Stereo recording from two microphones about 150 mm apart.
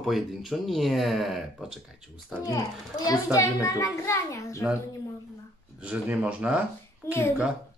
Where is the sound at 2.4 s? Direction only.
25° left (ahead or behind).